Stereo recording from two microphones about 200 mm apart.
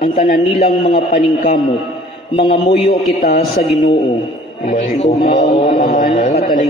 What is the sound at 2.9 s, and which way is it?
Speech, 50° left (ahead or behind).